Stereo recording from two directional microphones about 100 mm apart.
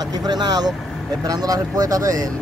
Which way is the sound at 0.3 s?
45° right (ahead or behind).